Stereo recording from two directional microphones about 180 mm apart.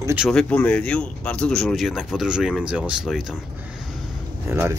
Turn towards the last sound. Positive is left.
turn(degrees=-15)  # may be behind; listen again after turning